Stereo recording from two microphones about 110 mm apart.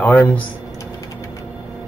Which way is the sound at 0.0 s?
20° left (ahead or behind).